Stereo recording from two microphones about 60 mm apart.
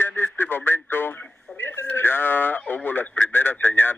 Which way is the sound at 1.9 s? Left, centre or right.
Left.